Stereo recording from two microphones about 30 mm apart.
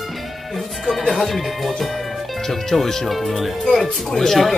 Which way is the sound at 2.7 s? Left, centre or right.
Centre.